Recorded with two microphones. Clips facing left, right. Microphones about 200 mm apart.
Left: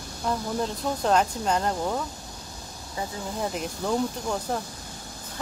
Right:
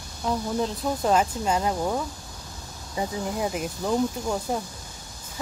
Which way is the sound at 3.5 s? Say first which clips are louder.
Right 1 dB; 5° right (ahead or behind).